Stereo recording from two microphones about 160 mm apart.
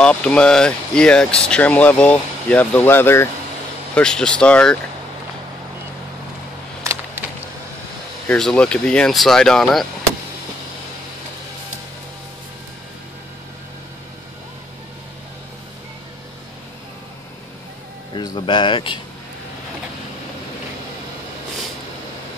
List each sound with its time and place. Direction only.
0.0 s speech: 5° left (ahead or behind)
8.3 s speech: 5° left (ahead or behind)
18.1 s speech: 25° left (ahead or behind)